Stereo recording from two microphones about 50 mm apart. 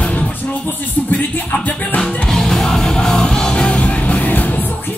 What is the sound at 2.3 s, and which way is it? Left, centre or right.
Music, centre.